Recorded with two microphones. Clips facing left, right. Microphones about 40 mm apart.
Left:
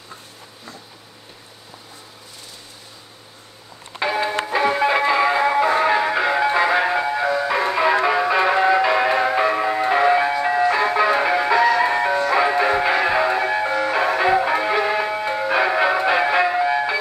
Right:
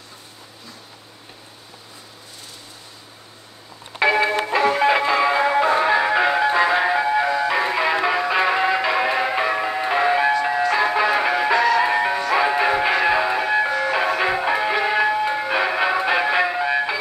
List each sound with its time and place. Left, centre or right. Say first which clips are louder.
4.0 s music: right 4 dB; right
4.7 s music: right 1 dB; centre
5.0 s music: left 1 dB; centre
6.3 s music: even; centre
11.8 s music: left 1 dB; centre